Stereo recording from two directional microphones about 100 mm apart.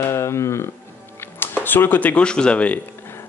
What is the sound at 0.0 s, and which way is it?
Speech, 30° left (ahead or behind).